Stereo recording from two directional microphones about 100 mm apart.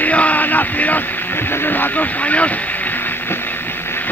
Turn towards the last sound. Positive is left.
turn(degrees=20)  # may be behind; listen again after turning